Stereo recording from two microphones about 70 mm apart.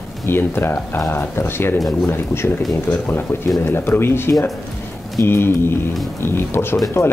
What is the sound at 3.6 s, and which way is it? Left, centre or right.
Speech, left.